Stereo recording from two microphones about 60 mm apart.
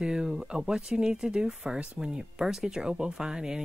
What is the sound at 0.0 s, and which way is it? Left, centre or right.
Speech, centre.